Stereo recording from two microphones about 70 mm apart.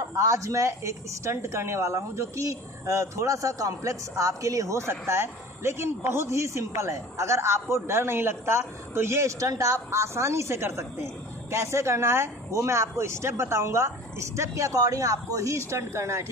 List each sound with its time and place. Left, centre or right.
0.2 s speech: right